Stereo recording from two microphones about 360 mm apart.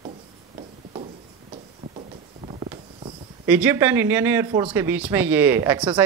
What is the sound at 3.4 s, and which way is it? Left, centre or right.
Speech, centre.